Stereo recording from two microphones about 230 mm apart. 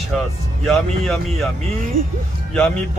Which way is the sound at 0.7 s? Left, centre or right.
Centre.